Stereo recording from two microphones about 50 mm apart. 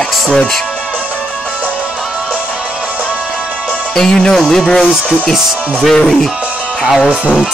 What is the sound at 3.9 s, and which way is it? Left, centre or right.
Speech, centre.